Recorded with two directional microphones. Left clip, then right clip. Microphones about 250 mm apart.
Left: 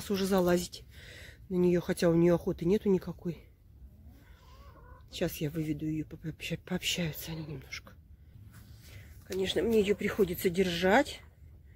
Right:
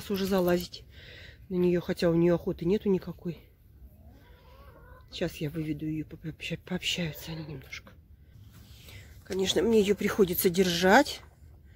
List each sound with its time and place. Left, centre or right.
0.0 s speech: centre
5.1 s speech: centre
9.4 s speech: right